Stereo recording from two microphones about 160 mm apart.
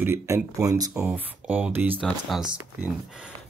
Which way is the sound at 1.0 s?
10° right (ahead or behind).